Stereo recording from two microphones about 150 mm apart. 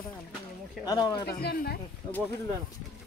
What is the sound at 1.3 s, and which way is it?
Speech, 90° left.